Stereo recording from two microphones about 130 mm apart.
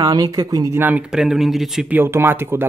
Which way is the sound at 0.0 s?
30° right (ahead or behind).